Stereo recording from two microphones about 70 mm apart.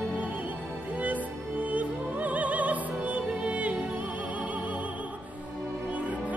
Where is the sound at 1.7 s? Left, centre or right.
Right.